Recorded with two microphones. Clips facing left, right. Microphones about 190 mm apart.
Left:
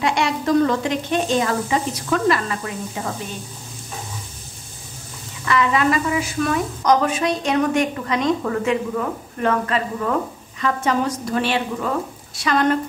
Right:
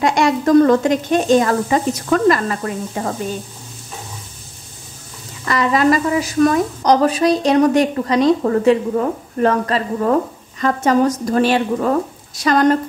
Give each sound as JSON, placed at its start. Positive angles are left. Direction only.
{"t": 0.0, "sound": "speech", "side_deg": -45}
{"t": 5.4, "sound": "speech", "side_deg": -40}